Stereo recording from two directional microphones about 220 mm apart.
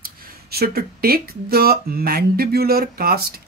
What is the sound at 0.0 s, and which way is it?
Speech, 45° right (ahead or behind).